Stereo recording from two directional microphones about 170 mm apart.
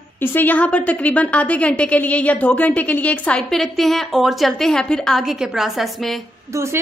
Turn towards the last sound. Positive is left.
turn(degrees=0)  # may be behind; listen again after turning